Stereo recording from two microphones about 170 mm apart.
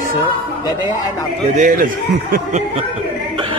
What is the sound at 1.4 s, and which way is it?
A man's voice, 45° right (ahead or behind).